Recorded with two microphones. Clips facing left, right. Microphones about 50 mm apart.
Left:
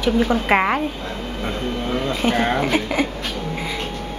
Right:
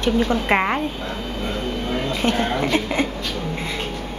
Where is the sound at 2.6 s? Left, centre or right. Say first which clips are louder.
Left 1 dB; centre.